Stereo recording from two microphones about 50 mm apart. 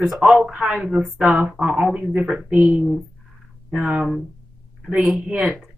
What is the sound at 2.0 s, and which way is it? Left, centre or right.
Speech, centre.